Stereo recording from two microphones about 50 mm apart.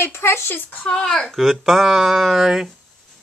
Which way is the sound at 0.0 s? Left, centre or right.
Left.